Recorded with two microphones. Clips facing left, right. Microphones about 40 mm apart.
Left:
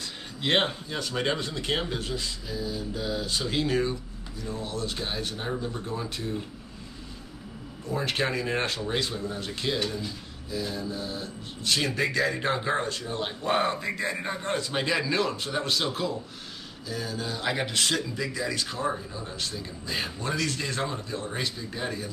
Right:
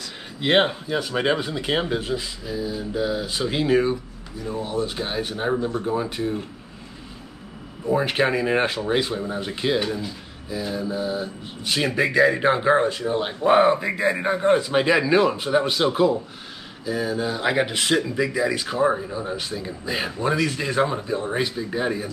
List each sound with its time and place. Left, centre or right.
0.4 s speech: centre
7.8 s speech: centre